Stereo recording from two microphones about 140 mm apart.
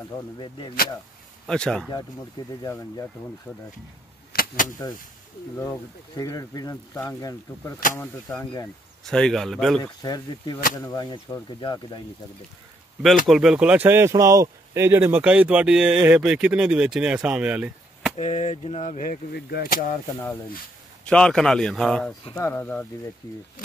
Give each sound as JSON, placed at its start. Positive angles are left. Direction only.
{"t": 0.4, "sound": "speech", "side_deg": 35}
{"t": 1.5, "sound": "speech", "side_deg": 5}
{"t": 4.3, "sound": "a sound", "side_deg": 90}
{"t": 5.6, "sound": "speech", "side_deg": 20}
{"t": 9.0, "sound": "speech", "side_deg": 5}
{"t": 9.8, "sound": "speech", "side_deg": 25}
{"t": 13.3, "sound": "speech", "side_deg": -5}
{"t": 18.1, "sound": "a sound", "side_deg": 55}
{"t": 19.6, "sound": "speech", "side_deg": 85}
{"t": 21.0, "sound": "speech", "side_deg": 5}